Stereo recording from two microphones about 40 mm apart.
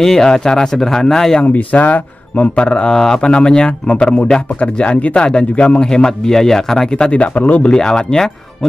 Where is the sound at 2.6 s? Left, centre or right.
Left.